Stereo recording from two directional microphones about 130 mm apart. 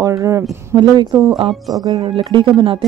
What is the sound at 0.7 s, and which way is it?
Speech, 35° right (ahead or behind).